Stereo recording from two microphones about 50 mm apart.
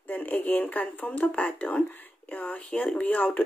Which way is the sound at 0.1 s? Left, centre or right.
Left.